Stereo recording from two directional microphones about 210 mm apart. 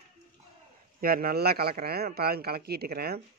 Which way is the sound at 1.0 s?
45° right (ahead or behind).